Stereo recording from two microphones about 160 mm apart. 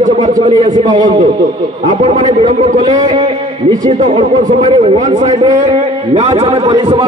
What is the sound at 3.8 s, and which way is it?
Speech, 50° right (ahead or behind).